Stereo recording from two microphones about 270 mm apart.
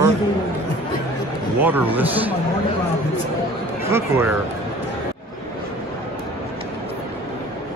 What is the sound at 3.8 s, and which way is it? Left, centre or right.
Speech, centre.